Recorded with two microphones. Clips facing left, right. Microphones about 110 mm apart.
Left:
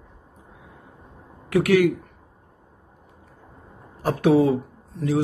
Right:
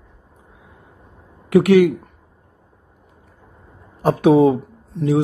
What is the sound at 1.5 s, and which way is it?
Speech, 20° right (ahead or behind).